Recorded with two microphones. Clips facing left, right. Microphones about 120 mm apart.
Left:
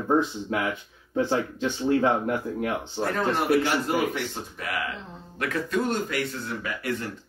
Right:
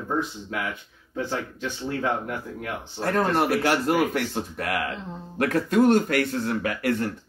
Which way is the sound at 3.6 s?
60° right (ahead or behind).